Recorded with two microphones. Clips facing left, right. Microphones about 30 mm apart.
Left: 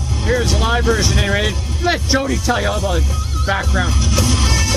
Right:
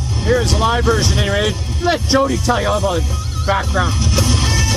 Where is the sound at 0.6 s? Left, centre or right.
Centre.